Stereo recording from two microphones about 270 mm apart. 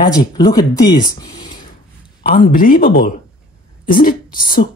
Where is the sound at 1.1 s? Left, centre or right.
Centre.